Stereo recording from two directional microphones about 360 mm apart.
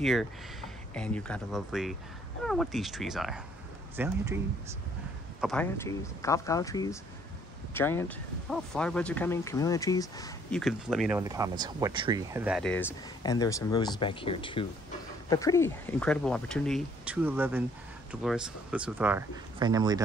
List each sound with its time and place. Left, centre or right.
0.0 s speech: centre
5.4 s speech: centre